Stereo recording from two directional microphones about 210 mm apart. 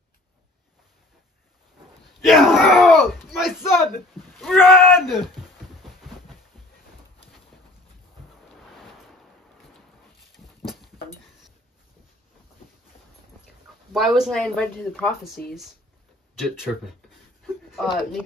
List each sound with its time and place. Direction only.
2.2 s a sound: centre (ahead or behind)
4.6 s speech: centre (ahead or behind)
5.8 s a sound: centre (ahead or behind)
10.3 s dog: centre (ahead or behind)
13.9 s speech: centre (ahead or behind)
16.3 s speech: centre (ahead or behind)